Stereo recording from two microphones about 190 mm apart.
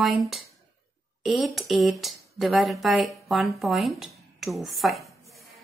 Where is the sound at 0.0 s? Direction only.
Centre (ahead or behind).